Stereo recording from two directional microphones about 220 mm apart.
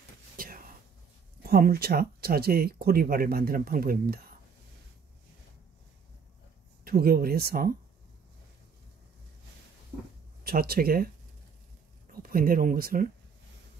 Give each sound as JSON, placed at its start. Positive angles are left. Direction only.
{"t": 0.4, "sound": "whispering", "side_deg": -40}
{"t": 1.4, "sound": "speech", "side_deg": -45}
{"t": 6.8, "sound": "speech", "side_deg": -45}
{"t": 10.4, "sound": "speech", "side_deg": -45}
{"t": 12.1, "sound": "speech", "side_deg": -40}